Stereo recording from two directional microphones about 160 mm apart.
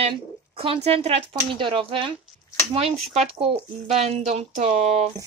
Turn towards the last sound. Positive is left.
turn(degrees=-45)  # may be behind; listen again after turning